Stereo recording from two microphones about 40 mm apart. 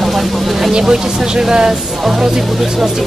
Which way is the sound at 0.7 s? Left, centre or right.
Centre.